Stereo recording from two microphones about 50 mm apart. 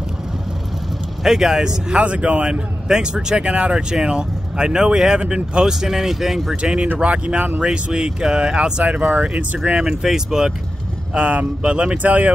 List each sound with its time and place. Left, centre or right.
1.2 s speech: centre; by 2.6 s right
2.9 s speech: centre
6.5 s speech: right
7.6 s speech: centre
9.8 s speech: centre
11.1 s speech: right
12.0 s speech: right